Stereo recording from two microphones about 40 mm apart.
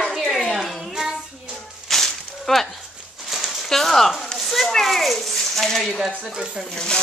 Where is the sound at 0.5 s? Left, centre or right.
Centre.